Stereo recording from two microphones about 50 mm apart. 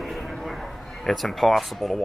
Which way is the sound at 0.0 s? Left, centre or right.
Centre.